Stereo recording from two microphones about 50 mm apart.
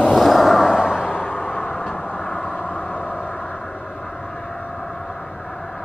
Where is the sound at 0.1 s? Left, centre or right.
Centre.